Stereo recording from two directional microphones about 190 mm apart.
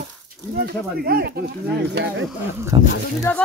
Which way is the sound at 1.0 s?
55° right (ahead or behind).